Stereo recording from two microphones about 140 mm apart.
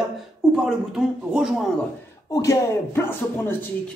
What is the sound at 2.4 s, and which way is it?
Speech, 15° left (ahead or behind).